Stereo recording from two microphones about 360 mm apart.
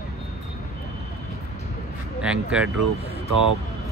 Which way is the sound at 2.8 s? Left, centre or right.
Right.